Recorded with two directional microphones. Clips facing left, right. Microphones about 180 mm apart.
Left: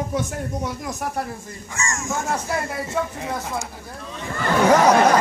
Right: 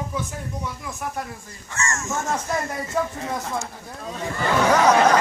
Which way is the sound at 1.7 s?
10° left (ahead or behind).